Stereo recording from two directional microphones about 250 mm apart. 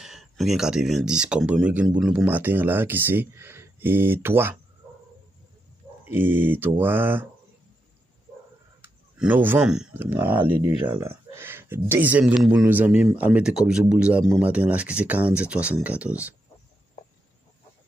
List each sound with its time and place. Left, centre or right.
0.0 s speech: centre
6.0 s speech: centre
8.8 s speech: centre
10.9 s a sound: centre
11.9 s speech: centre